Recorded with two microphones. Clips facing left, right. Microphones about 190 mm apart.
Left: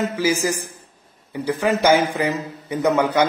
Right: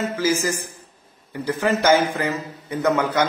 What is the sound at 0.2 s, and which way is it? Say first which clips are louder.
A man's voice: even; 15° left (ahead or behind).